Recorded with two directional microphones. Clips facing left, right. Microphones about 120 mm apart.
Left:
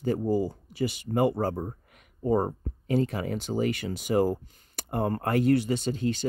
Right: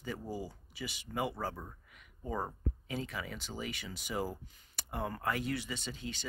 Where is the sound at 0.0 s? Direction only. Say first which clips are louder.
Left 14 dB; 50° left (ahead or behind).